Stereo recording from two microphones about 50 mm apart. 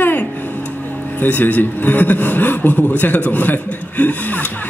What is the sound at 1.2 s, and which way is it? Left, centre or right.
A man's voice, left.